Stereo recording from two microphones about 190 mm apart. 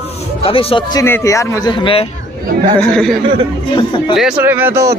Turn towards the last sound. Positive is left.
turn(degrees=-15)  # may be behind; listen again after turning